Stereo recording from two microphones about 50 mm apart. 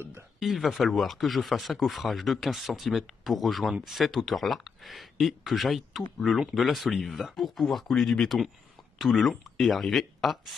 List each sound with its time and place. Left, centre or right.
0.4 s speech: centre